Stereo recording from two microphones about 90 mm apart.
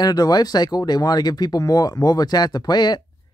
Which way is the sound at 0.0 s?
45° left (ahead or behind).